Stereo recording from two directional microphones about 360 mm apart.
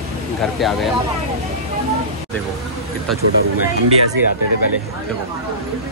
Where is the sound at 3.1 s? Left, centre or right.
Centre.